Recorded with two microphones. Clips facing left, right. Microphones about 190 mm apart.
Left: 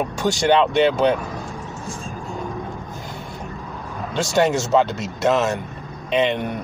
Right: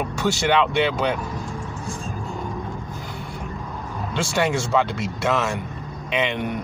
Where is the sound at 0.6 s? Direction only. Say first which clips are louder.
Left 4 dB; 45° left (ahead or behind).